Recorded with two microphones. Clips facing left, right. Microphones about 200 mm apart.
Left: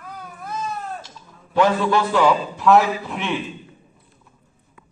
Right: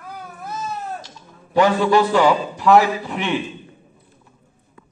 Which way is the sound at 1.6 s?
5° right (ahead or behind).